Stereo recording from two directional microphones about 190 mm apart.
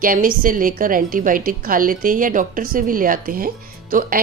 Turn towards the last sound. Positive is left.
turn(degrees=-50)  # may be behind; listen again after turning